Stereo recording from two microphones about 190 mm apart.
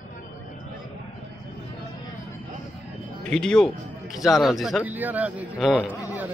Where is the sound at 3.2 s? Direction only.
5° left (ahead or behind).